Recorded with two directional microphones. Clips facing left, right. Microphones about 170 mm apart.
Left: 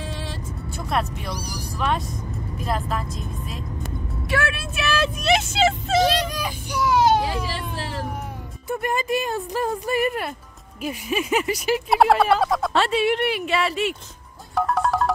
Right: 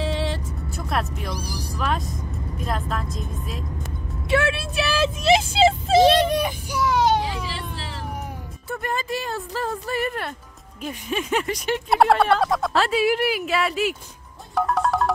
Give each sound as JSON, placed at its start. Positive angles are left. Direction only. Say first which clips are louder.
{"t": 0.0, "sound": "vehicle", "louder": "right 7 dB", "side_deg": -75}
{"t": 0.8, "sound": "speech", "louder": "left 1 dB", "side_deg": 0}
{"t": 4.3, "sound": "speech", "louder": "right 4 dB", "side_deg": -25}
{"t": 6.7, "sound": "a sound", "louder": "left 2 dB", "side_deg": 0}
{"t": 7.4, "sound": "a sound", "louder": "left 3 dB", "side_deg": 45}
{"t": 8.6, "sound": "speech", "louder": "left 3 dB", "side_deg": 15}
{"t": 14.5, "sound": "music", "louder": "even", "side_deg": 0}